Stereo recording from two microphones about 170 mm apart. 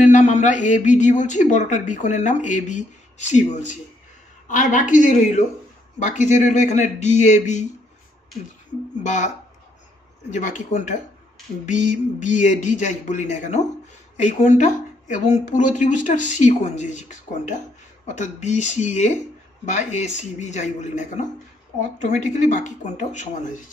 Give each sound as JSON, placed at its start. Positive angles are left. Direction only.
{"t": 0.0, "sound": "a man's voice", "side_deg": 45}
{"t": 9.0, "sound": "a man's voice", "side_deg": 45}
{"t": 10.3, "sound": "a man's voice", "side_deg": 45}